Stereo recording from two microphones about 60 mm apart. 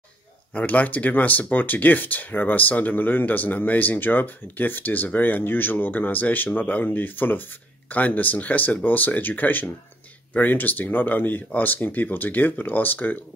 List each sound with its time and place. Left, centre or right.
0.5 s speech: left